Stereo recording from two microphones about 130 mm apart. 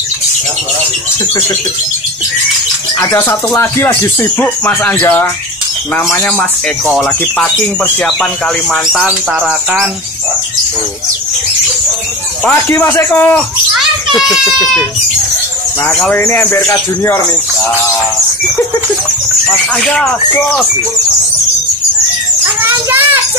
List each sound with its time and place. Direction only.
3.1 s speech: 20° left (ahead or behind)
6.9 s speech: 5° left (ahead or behind)
12.4 s speech: 15° left (ahead or behind)
15.9 s speech: 15° left (ahead or behind)
19.5 s speech: 5° left (ahead or behind)
22.4 s a child's voice: 20° right (ahead or behind)